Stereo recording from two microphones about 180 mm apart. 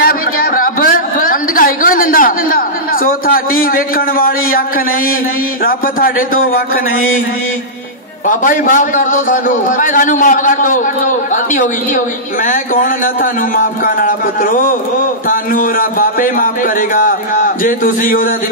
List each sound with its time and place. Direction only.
0.0 s a sound: 50° left (ahead or behind)
5.6 s a man's voice: 55° left (ahead or behind)
8.3 s a man's voice: 50° left (ahead or behind)